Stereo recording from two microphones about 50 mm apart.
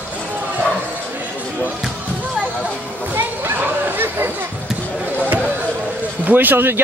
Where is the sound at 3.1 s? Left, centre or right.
Right.